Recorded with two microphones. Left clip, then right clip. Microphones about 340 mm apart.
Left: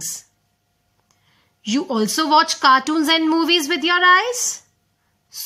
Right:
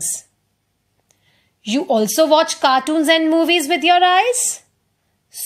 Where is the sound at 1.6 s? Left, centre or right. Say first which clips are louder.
Right 4 dB; centre.